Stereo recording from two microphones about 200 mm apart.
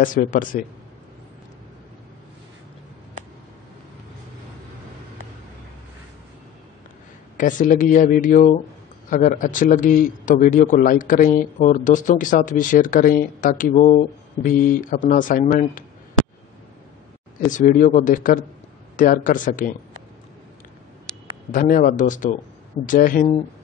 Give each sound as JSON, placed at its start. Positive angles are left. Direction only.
{"t": 0.0, "sound": "a man's voice", "side_deg": 40}
{"t": 7.3, "sound": "a man's voice", "side_deg": 40}
{"t": 17.5, "sound": "a man's voice", "side_deg": 40}
{"t": 21.5, "sound": "a man's voice", "side_deg": 40}